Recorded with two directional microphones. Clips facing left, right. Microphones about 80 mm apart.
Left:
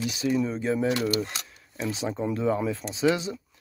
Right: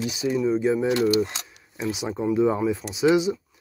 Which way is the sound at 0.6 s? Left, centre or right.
Centre.